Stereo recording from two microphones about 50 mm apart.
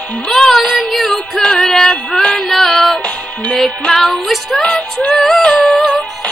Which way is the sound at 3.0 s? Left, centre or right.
Left.